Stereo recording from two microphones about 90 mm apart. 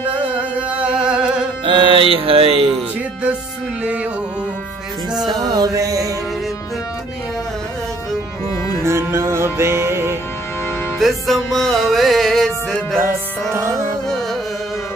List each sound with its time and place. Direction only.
0.0 s music: 15° right (ahead or behind)
1.7 s mantra: 70° right (ahead or behind); by 2.7 s 90° right
3.8 s music: 15° right (ahead or behind)
5.4 s chant: 45° right (ahead or behind)
8.8 s music: 30° right (ahead or behind)
11.0 s music: centre (ahead or behind)
13.5 s music: 30° right (ahead or behind)
14.0 s music: 5° left (ahead or behind)